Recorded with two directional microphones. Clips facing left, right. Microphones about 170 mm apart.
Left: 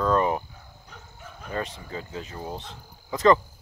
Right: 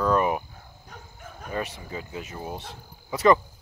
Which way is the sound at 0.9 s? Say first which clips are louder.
Right 2 dB; 50° right (ahead or behind).